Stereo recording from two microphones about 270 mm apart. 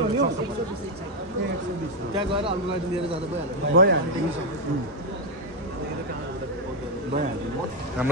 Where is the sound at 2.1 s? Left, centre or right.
Centre.